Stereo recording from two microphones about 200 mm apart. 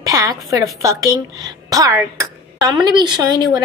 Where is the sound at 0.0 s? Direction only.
15° right (ahead or behind).